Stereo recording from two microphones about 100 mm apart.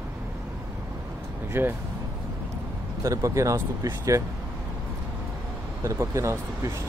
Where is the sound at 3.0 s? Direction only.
30° right (ahead or behind).